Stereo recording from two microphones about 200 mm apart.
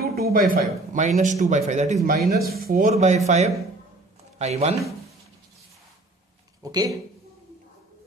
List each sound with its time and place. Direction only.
0.0 s speech: 50° right (ahead or behind)
2.2 s speech: 50° right (ahead or behind); by 4.7 s 35° right (ahead or behind)
6.6 s speech: 20° right (ahead or behind)